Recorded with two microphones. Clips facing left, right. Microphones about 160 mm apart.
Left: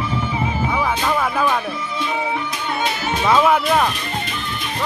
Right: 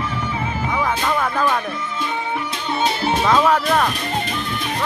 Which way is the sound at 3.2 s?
10° left (ahead or behind).